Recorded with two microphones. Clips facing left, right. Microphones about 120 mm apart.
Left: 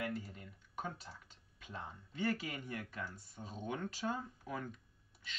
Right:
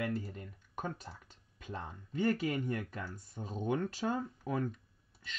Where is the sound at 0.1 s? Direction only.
45° right (ahead or behind).